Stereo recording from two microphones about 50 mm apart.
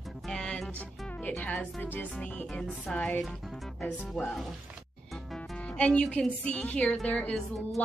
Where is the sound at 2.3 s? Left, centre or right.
Left.